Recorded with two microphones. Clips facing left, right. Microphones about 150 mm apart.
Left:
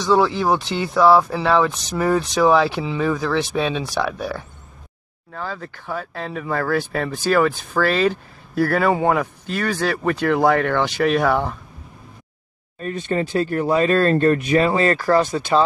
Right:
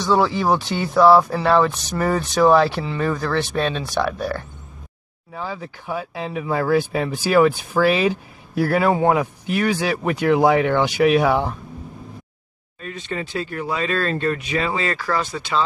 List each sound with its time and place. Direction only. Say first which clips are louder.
0.0 s speech: left 1 dB; centre (ahead or behind)
12.8 s speech: left 6 dB; 45° left (ahead or behind)